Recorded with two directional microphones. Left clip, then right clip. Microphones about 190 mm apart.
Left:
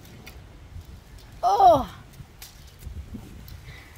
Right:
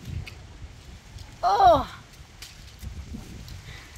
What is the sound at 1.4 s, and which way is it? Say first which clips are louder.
Speech: left 1 dB; 15° left (ahead or behind).